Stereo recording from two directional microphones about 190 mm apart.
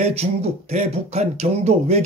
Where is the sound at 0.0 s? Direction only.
35° right (ahead or behind).